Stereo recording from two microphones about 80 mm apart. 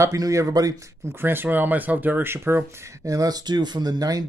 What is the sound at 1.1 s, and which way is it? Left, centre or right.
Speech, right.